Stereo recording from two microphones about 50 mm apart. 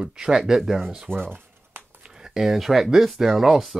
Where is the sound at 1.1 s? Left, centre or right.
Right.